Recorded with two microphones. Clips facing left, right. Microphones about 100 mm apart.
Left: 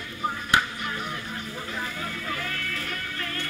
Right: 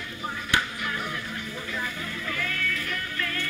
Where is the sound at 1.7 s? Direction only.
35° left (ahead or behind).